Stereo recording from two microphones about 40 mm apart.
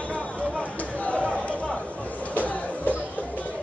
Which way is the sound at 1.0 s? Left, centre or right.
Left.